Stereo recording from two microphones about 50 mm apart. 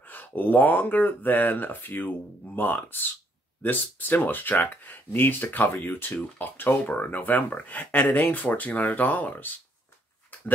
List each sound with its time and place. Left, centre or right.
0.0 s speech: left
10.3 s dog: left